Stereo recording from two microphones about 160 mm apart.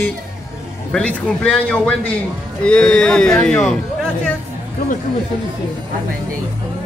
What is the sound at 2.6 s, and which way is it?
Mantra, 5° left (ahead or behind).